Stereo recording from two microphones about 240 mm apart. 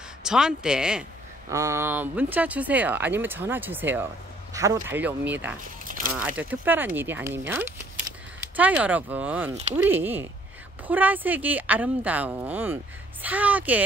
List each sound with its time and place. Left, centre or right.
0.2 s speech: centre
5.9 s a sound: right
6.1 s speech: centre